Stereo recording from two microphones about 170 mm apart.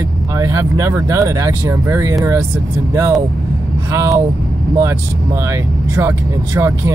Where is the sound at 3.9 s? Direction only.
20° right (ahead or behind).